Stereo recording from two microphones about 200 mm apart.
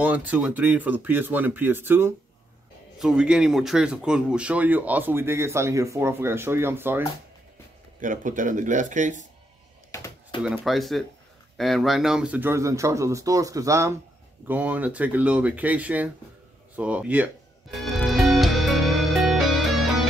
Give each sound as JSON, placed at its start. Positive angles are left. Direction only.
{"t": 0.0, "sound": "speech", "side_deg": -10}
{"t": 8.0, "sound": "speech", "side_deg": -40}
{"t": 9.8, "sound": "a sound", "side_deg": 15}
{"t": 10.4, "sound": "speech", "side_deg": 0}
{"t": 17.7, "sound": "music", "side_deg": 0}